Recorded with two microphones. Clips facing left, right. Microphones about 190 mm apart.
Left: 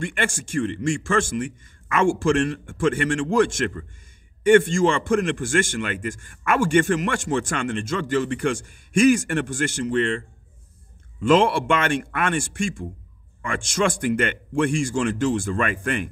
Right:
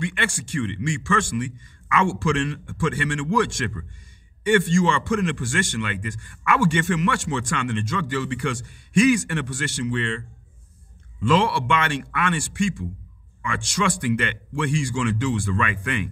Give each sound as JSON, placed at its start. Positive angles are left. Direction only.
{"t": 0.0, "sound": "a man's voice", "side_deg": 45}
{"t": 11.2, "sound": "a man's voice", "side_deg": 50}